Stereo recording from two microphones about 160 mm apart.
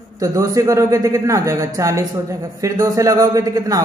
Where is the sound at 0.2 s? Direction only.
20° right (ahead or behind).